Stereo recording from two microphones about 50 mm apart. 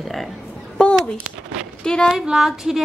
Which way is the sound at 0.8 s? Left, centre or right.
Centre.